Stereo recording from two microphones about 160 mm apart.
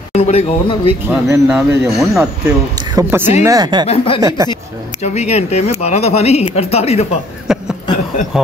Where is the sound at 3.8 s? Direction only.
35° left (ahead or behind).